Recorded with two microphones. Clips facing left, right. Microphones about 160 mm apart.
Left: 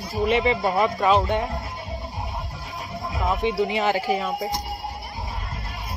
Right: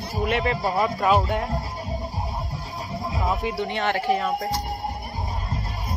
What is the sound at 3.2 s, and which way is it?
Speech, centre (ahead or behind).